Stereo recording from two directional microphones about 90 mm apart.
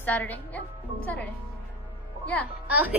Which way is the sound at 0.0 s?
20° left (ahead or behind).